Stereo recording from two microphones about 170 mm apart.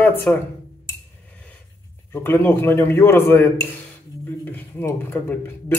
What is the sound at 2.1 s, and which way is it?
A man's voice, 15° left (ahead or behind).